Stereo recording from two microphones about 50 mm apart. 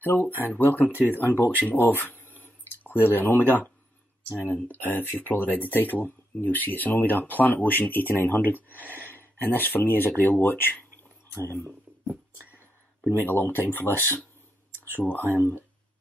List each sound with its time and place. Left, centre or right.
0.0 s speech: left
11.3 s speech: left
13.2 s speech: left
15.3 s speech: left